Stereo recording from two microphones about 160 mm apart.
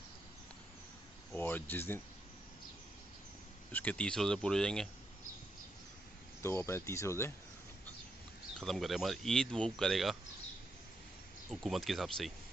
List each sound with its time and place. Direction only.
1.3 s a sound: 10° left (ahead or behind)
3.7 s speech: 10° left (ahead or behind)
6.4 s speech: 15° left (ahead or behind)
8.5 s speech: centre (ahead or behind)
11.5 s speech: centre (ahead or behind)